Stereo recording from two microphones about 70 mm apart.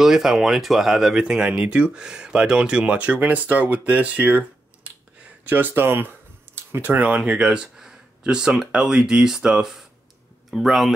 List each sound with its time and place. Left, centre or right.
0.0 s speech: centre; by 6.0 s right
6.5 s a sound: right
7.0 s speech: centre